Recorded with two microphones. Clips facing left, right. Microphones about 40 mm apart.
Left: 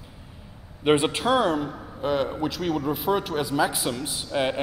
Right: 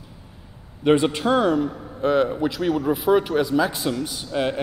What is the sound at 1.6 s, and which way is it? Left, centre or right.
A man's voice, centre.